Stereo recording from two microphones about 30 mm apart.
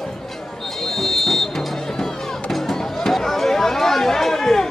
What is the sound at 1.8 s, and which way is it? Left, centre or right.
Music, centre.